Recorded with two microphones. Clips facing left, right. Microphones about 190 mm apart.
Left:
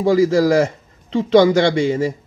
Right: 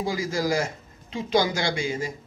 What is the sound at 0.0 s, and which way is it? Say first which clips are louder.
Speech: left 12 dB; 70° left (ahead or behind).